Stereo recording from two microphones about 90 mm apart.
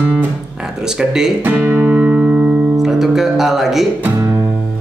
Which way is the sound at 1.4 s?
20° right (ahead or behind).